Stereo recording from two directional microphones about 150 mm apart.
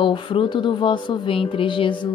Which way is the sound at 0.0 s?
35° left (ahead or behind).